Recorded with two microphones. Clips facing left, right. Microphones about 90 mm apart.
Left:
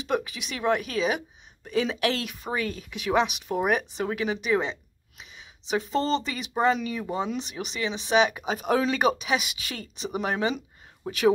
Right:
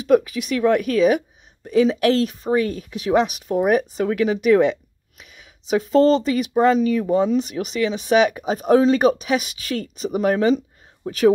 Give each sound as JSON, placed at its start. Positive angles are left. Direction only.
{"t": 0.0, "sound": "speech", "side_deg": -45}